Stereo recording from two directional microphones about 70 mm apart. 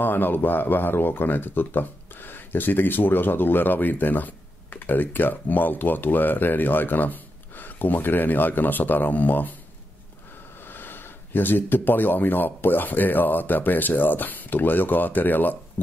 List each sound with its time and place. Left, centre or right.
0.0 s speech: left
10.7 s speech: left